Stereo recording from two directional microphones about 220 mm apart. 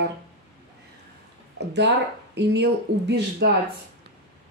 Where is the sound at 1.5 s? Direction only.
50° right (ahead or behind).